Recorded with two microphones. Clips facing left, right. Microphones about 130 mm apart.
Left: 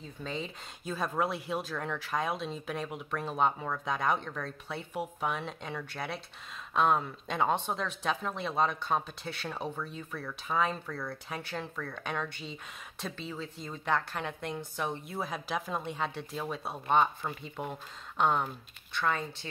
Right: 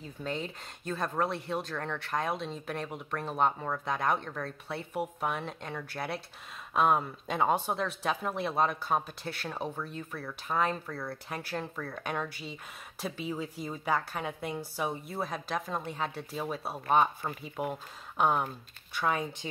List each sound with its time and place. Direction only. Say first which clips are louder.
0.0 s speech: right 2 dB; centre (ahead or behind)